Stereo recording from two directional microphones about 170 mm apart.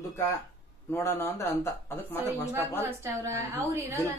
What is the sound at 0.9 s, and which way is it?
Speech, 15° left (ahead or behind).